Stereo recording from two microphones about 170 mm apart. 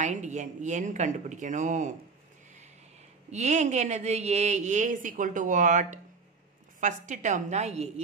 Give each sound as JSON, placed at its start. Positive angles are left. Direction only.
{"t": 0.0, "sound": "a woman's voice", "side_deg": -45}
{"t": 3.3, "sound": "a woman's voice", "side_deg": -40}